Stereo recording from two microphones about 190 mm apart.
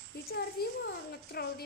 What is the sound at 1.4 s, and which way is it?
Speech, 55° left (ahead or behind).